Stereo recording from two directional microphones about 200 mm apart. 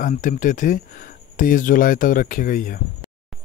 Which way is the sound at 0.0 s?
40° left (ahead or behind).